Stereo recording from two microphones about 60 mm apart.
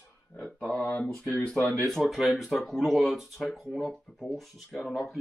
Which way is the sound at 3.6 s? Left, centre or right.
Centre.